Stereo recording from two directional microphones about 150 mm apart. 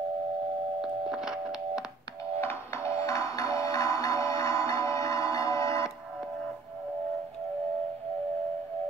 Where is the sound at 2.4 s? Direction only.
20° left (ahead or behind).